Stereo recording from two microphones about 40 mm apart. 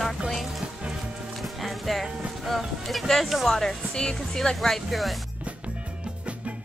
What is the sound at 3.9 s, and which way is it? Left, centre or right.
Speech, centre.